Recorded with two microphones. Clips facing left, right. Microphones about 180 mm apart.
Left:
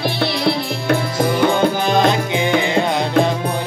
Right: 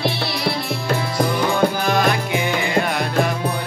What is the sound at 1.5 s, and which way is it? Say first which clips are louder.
Music: left 2 dB; 20° left (ahead or behind).